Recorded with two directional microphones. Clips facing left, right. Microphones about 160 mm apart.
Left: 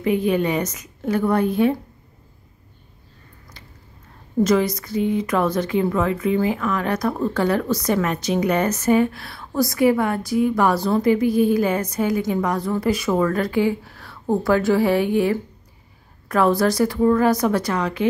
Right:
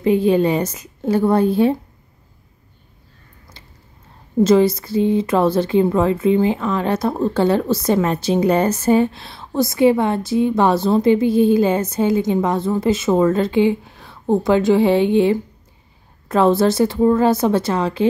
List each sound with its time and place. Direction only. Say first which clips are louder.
0.0 s speech: right 5 dB; 30° right (ahead or behind)
3.6 s a sound: left 1 dB; 30° right (ahead or behind)
4.4 s speech: right 5 dB; 30° right (ahead or behind)